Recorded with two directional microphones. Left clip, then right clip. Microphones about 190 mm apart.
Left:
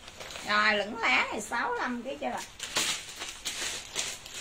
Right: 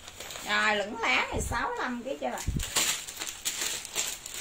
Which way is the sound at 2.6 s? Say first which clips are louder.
Right 1 dB; 35° right (ahead or behind).